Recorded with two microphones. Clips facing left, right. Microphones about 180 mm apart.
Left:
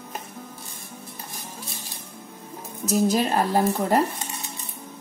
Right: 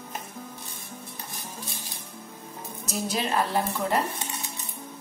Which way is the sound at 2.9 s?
45° left (ahead or behind).